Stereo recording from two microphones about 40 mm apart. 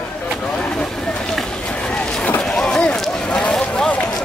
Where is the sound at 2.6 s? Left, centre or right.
Left.